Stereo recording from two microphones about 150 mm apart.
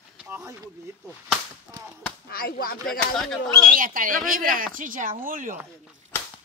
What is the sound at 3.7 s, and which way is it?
Speech, 65° right (ahead or behind).